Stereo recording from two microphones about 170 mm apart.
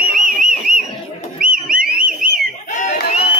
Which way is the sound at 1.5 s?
55° right (ahead or behind).